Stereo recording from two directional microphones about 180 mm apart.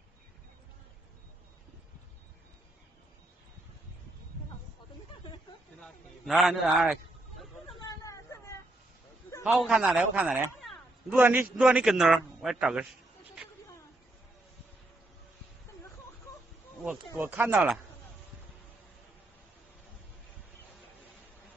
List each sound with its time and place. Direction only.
5.8 s a man's voice: centre (ahead or behind)
8.0 s a sound: 15° left (ahead or behind)
9.4 s a man's voice: 5° right (ahead or behind)
16.8 s speech: 5° right (ahead or behind)